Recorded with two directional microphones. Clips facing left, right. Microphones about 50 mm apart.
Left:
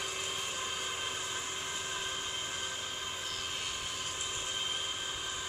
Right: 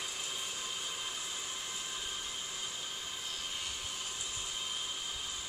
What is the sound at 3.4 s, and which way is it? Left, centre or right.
Vehicle, left.